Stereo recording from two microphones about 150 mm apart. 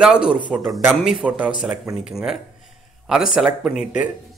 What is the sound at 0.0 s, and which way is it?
Speech, 5° right (ahead or behind).